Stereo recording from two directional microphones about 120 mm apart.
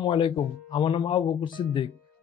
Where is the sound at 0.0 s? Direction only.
40° left (ahead or behind).